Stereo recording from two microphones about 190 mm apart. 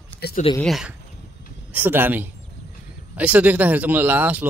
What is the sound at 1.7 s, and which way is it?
Speech, 10° right (ahead or behind).